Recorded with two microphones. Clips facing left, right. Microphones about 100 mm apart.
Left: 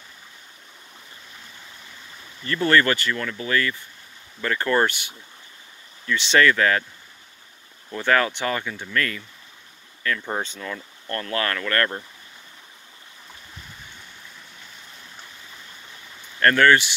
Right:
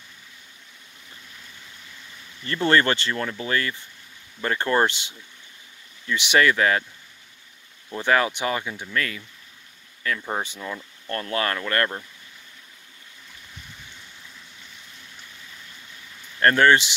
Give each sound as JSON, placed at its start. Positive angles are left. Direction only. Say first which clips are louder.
{"t": 2.4, "sound": "speech", "louder": "left 1 dB", "side_deg": -25}
{"t": 6.0, "sound": "speech", "louder": "left 1 dB", "side_deg": -15}
{"t": 7.9, "sound": "speech", "louder": "even", "side_deg": -15}
{"t": 16.3, "sound": "speech", "louder": "even", "side_deg": -25}